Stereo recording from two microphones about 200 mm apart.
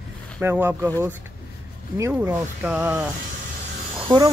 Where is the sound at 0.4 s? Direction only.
10° right (ahead or behind).